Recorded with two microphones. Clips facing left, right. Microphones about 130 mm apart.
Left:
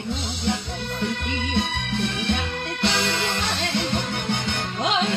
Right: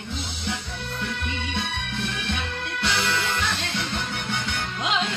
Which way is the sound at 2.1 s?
30° left (ahead or behind).